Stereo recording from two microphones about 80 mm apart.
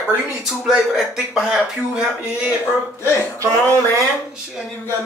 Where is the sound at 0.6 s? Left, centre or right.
Centre.